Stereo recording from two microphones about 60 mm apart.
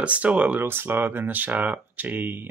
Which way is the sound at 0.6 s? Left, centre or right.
Right.